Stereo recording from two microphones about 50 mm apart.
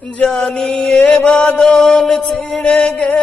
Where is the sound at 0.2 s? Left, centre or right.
Centre.